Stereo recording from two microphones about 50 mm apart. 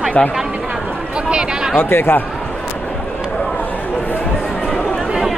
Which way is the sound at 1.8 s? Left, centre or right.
Left.